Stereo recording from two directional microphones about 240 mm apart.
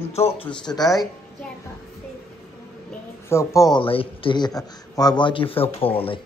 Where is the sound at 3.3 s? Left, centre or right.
Centre.